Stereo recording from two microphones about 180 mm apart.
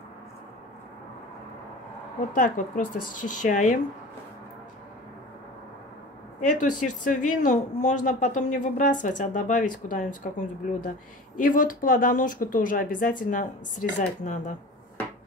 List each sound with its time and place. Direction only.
2.3 s speech: 45° left (ahead or behind)
6.4 s speech: 45° left (ahead or behind)